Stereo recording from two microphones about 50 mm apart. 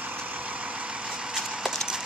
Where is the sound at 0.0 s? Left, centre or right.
Right; by 1.3 s centre.